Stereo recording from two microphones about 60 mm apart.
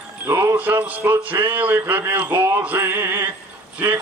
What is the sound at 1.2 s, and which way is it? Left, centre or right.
Male singing, right.